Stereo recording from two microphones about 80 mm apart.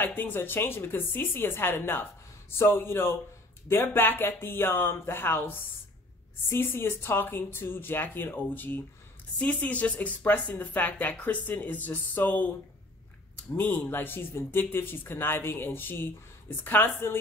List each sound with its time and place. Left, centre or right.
0.0 s speech: left
13.6 s speech: left